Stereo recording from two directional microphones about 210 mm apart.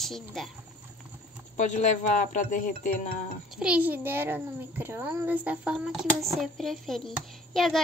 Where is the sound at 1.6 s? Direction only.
35° left (ahead or behind).